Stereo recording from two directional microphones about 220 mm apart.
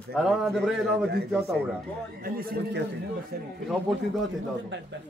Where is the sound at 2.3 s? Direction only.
40° right (ahead or behind).